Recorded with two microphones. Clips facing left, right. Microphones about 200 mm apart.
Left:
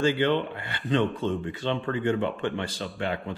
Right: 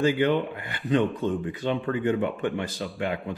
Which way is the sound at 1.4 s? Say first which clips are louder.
Right 2 dB; 15° right (ahead or behind).